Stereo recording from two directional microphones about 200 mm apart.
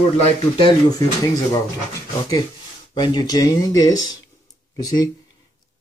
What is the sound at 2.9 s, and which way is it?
Speech, 20° left (ahead or behind).